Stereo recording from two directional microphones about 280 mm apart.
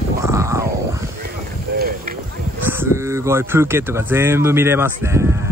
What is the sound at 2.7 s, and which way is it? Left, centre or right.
Speech, centre.